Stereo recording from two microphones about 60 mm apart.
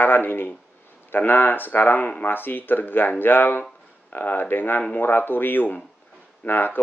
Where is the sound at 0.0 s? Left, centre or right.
Left.